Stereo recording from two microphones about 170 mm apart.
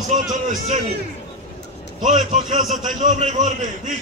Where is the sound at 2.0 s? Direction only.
45° right (ahead or behind).